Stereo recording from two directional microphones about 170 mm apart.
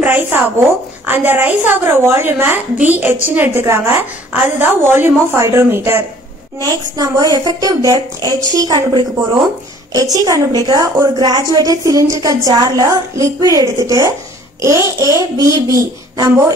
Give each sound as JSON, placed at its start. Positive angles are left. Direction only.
{"t": 0.0, "sound": "a woman's voice", "side_deg": -10}